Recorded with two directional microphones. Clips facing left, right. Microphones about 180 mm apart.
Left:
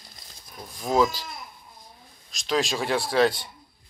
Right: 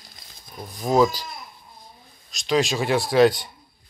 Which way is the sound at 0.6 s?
15° right (ahead or behind).